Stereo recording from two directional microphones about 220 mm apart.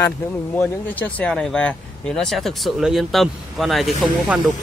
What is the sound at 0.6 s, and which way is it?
Speech, 10° left (ahead or behind).